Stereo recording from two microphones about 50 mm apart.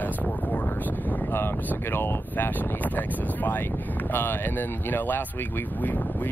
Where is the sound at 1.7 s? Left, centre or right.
Left.